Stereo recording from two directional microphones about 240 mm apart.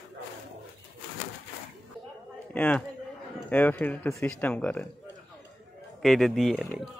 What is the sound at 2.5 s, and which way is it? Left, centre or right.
A man's voice, centre.